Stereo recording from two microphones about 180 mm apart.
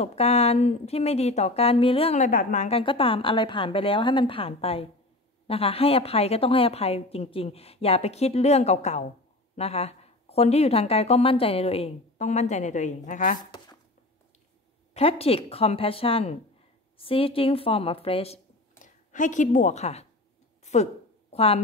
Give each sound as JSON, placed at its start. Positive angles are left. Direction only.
{"t": 0.0, "sound": "speech", "side_deg": 35}
{"t": 2.8, "sound": "a woman's voice", "side_deg": 30}
{"t": 15.0, "sound": "speech", "side_deg": 35}
{"t": 19.1, "sound": "a woman's voice", "side_deg": 45}
{"t": 20.6, "sound": "a sound", "side_deg": 40}